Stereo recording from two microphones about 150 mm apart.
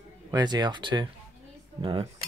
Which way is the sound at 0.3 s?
30° right (ahead or behind).